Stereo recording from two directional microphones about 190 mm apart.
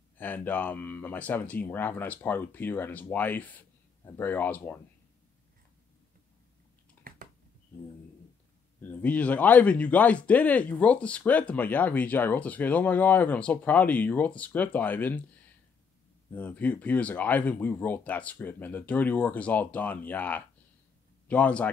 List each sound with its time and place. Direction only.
0.2 s speech: 10° left (ahead or behind)
7.1 s a sound: 50° right (ahead or behind)
8.8 s speech: 10° left (ahead or behind)
16.3 s speech: 10° left (ahead or behind)